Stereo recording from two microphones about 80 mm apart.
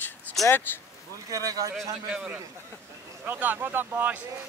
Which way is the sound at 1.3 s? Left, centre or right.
Right.